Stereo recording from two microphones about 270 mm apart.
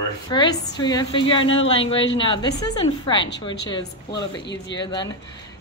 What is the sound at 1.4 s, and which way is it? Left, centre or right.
Speech, left.